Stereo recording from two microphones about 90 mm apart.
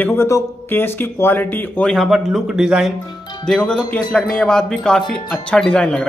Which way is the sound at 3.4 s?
10° left (ahead or behind).